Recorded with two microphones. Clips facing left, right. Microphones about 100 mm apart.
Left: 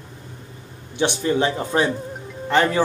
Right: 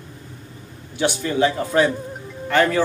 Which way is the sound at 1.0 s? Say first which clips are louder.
Right 1 dB; 25° left (ahead or behind).